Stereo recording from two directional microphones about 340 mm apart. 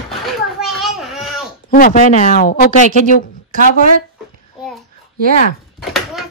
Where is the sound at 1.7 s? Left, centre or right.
Left.